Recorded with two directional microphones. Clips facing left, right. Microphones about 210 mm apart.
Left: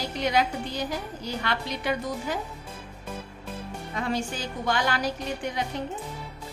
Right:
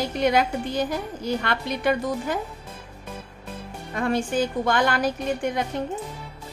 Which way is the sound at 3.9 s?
55° right (ahead or behind).